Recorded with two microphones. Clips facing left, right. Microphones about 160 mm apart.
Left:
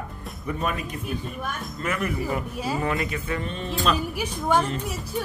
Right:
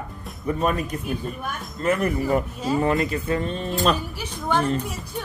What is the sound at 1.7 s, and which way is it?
Speech, 40° right (ahead or behind).